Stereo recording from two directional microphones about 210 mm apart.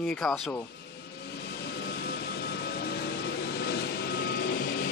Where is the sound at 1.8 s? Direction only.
50° left (ahead or behind).